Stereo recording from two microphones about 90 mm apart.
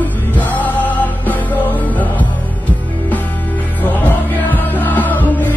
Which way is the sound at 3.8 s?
20° left (ahead or behind).